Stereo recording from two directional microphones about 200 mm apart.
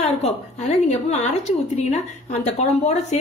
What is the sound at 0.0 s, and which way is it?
A woman's voice, 35° left (ahead or behind).